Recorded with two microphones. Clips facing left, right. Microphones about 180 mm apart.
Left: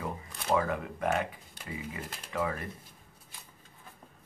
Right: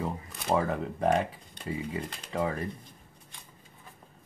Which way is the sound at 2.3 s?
30° right (ahead or behind).